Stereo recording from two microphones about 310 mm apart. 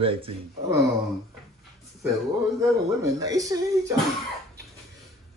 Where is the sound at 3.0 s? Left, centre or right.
Centre.